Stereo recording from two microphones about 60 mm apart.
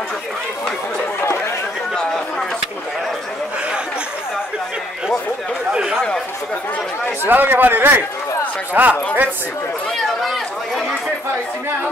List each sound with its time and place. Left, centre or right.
5.7 s a sound: centre
5.9 s chatter: centre
7.2 s a man's voice: right